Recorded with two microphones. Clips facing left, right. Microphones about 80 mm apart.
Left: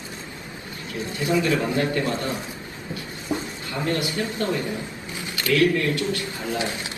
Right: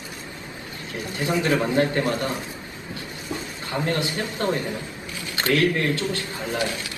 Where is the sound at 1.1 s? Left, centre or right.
Right.